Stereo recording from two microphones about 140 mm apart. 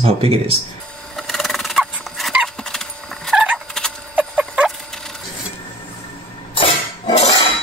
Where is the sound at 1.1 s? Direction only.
Centre (ahead or behind).